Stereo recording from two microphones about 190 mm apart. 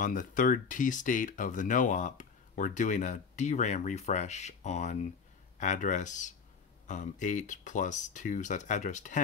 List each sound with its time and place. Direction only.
0.0 s speech: 45° left (ahead or behind)